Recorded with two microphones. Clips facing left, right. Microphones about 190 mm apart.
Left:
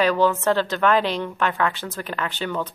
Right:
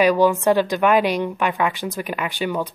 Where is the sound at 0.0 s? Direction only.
15° right (ahead or behind).